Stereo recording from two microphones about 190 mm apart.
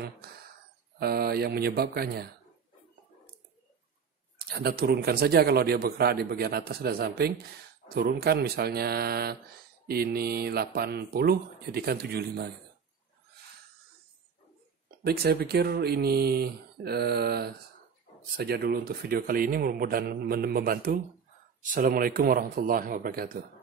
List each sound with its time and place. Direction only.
0.9 s a man's voice: 55° right (ahead or behind)
4.4 s a man's voice: 55° right (ahead or behind)
15.0 s a man's voice: 55° right (ahead or behind)